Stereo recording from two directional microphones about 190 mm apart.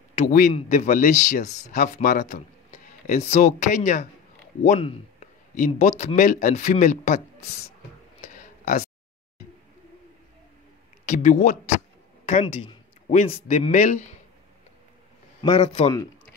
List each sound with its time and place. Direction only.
0.3 s speech: 45° left (ahead or behind)
7.2 s speech: 15° left (ahead or behind)
8.2 s a sound: 40° left (ahead or behind)
11.1 s speech: 40° left (ahead or behind)
15.4 s speech: 25° left (ahead or behind)